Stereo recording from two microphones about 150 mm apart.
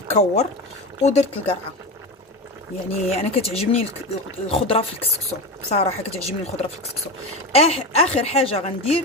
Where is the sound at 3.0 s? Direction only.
45° left (ahead or behind).